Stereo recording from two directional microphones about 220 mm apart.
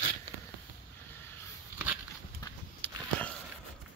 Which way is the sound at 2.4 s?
10° left (ahead or behind).